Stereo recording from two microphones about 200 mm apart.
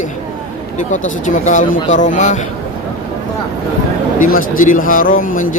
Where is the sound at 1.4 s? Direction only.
40° left (ahead or behind).